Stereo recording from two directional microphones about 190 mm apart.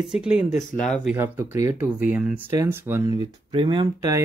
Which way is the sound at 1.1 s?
10° right (ahead or behind).